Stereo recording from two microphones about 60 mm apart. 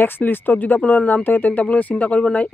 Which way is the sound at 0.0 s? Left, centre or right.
Left.